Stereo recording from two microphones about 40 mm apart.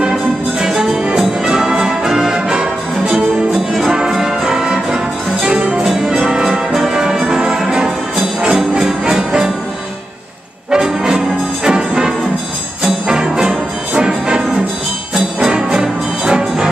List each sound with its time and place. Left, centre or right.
0.6 s music: centre
5.9 s music: centre
10.7 s brass instrument: centre
13.1 s music: centre
15.7 s music: centre